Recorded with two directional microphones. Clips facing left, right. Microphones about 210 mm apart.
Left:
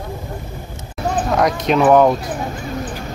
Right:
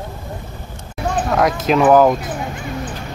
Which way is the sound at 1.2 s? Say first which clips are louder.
Right 1 dB; centre (ahead or behind).